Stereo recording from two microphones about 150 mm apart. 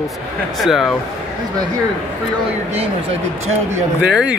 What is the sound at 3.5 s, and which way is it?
Speech, 50° right (ahead or behind).